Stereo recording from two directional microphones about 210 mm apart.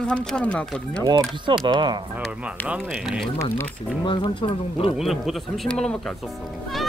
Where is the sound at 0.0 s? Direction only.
5° left (ahead or behind).